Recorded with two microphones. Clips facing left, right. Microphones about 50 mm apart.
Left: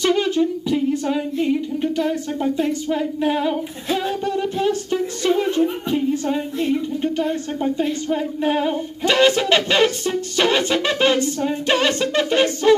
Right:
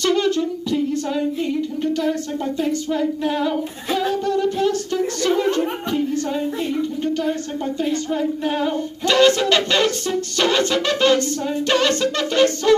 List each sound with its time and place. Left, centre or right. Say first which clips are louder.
0.0 s humming: left 1 dB; centre
5.9 s speech: left 1 dB; centre
7.2 s singing: left 1 dB; centre